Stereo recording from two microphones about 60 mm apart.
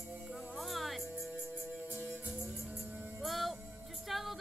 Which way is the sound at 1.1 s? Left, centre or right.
Right.